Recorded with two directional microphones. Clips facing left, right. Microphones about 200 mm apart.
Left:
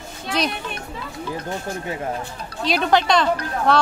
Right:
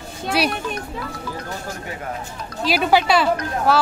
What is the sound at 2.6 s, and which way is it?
A woman's voice, 5° right (ahead or behind).